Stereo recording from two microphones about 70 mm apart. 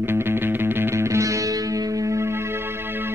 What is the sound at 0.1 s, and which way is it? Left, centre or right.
Music, right.